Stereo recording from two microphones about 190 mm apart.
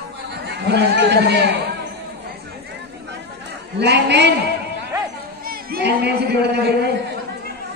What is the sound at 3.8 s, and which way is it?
Speech, 60° right (ahead or behind).